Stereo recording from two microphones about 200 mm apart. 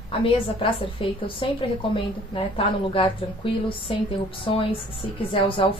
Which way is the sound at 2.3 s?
25° left (ahead or behind).